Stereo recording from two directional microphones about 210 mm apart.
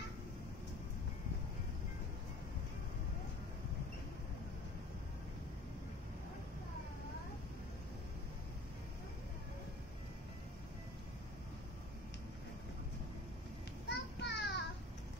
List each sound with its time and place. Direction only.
13.8 s child singing: 55° left (ahead or behind)